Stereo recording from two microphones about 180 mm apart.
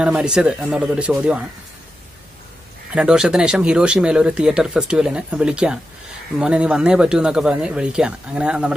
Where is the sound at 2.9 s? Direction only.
5° right (ahead or behind).